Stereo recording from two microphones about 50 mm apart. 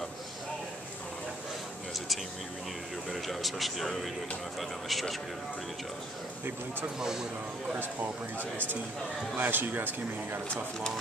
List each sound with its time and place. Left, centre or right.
3.1 s speech: centre
7.0 s speech: centre
9.4 s speech: right